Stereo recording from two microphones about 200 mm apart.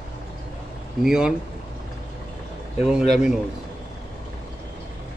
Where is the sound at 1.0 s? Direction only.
5° right (ahead or behind).